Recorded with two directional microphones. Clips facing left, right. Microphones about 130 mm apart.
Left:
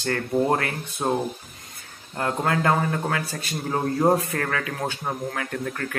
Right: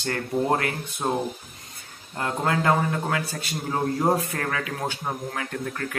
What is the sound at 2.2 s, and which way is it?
A man's voice, 25° right (ahead or behind).